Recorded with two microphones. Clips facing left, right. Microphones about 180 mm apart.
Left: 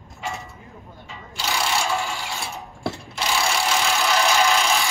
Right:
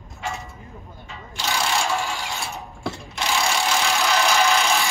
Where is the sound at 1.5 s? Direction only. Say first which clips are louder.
Even; centre (ahead or behind).